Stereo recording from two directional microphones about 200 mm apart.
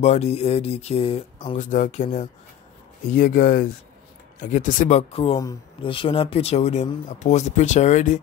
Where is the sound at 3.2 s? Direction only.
45° left (ahead or behind).